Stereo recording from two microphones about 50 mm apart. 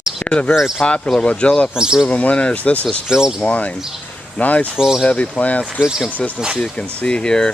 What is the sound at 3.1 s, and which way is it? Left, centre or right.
Speech, centre.